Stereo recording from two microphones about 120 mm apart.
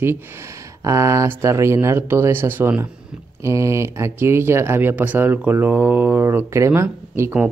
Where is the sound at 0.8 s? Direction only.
25° right (ahead or behind).